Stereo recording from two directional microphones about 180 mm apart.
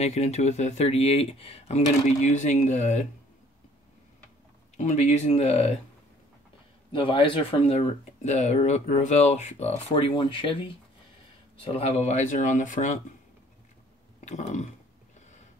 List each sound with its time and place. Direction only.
0.0 s speech: 35° left (ahead or behind)
4.7 s speech: 40° left (ahead or behind)
6.9 s speech: 30° left (ahead or behind)
11.6 s speech: 35° left (ahead or behind)
14.2 s burping: 40° left (ahead or behind)